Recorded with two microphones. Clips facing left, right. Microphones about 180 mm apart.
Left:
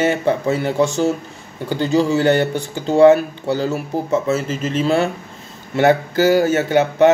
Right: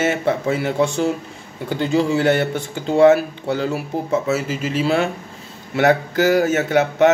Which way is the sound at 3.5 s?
35° left (ahead or behind).